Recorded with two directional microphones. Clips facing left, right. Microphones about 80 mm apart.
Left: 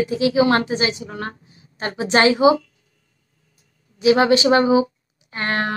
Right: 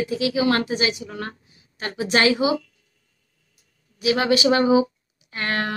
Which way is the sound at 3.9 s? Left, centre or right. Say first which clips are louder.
Left 5 dB; left.